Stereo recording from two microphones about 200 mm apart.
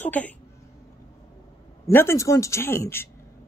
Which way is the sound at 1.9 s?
10° left (ahead or behind).